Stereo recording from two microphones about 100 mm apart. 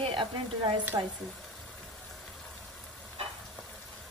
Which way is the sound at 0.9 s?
45° right (ahead or behind).